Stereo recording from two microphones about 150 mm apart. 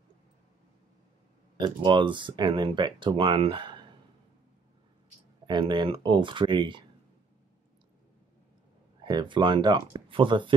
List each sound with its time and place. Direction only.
1.6 s speech: 30° right (ahead or behind)
5.5 s speech: 30° right (ahead or behind)
9.0 s speech: 30° right (ahead or behind)